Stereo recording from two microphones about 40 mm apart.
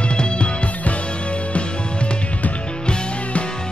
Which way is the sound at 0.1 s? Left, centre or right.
Left.